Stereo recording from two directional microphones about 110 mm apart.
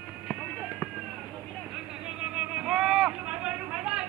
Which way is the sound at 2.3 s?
5° right (ahead or behind).